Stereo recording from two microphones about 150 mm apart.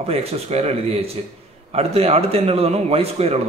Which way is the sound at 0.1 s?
45° right (ahead or behind).